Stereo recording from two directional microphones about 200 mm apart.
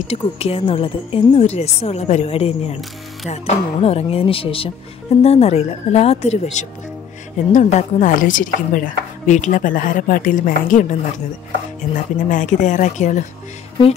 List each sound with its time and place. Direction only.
0.1 s a woman's voice: 30° left (ahead or behind)